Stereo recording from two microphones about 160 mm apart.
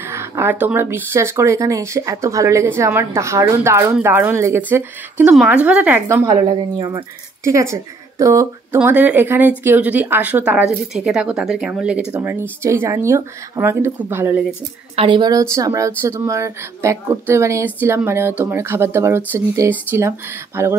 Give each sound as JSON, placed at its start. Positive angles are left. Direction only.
{"t": 0.1, "sound": "speech", "side_deg": -15}
{"t": 7.4, "sound": "speech", "side_deg": -20}
{"t": 15.0, "sound": "a woman's voice", "side_deg": -30}